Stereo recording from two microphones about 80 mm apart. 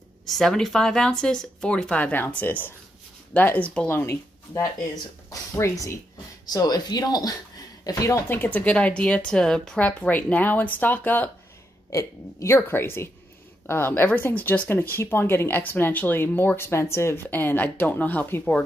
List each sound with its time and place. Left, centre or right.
0.3 s speech: centre
3.9 s speech: left
6.5 s speech: left
8.3 s speech: left
9.8 s speech: centre
11.9 s a woman's voice: left
17.3 s speech: left